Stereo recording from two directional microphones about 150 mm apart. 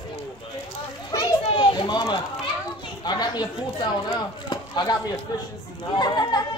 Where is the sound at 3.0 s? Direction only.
30° left (ahead or behind).